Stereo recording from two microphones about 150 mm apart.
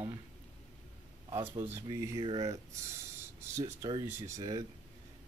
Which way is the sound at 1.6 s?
15° right (ahead or behind).